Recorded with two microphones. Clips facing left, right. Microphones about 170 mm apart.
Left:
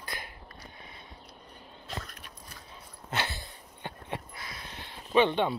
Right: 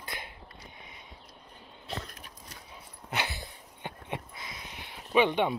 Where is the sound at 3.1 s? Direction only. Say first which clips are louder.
Even; 15° right (ahead or behind).